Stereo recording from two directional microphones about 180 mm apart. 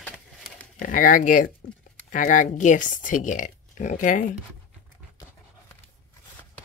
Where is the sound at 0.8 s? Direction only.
50° left (ahead or behind).